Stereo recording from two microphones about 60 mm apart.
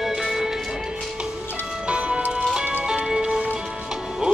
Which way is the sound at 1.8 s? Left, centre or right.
Centre.